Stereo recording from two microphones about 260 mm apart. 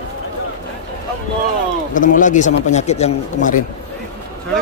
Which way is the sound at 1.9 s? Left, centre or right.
Left.